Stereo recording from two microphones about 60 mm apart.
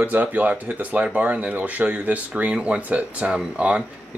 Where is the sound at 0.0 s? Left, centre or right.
Right.